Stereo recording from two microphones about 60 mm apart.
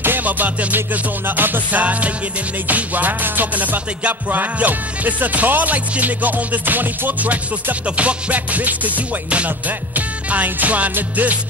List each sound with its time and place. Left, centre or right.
0.0 s music: right